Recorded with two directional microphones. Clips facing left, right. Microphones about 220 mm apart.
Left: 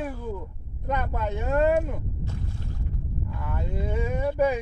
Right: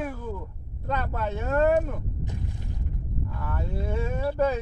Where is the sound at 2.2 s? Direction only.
15° right (ahead or behind).